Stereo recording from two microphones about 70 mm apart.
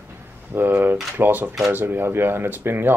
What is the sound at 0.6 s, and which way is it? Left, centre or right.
Speech, right.